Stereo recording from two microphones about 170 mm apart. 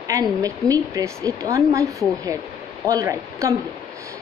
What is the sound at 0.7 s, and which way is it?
A woman's voice, 20° right (ahead or behind).